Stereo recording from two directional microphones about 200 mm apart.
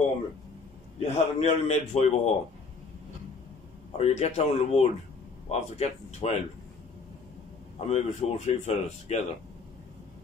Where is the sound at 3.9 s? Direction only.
30° left (ahead or behind).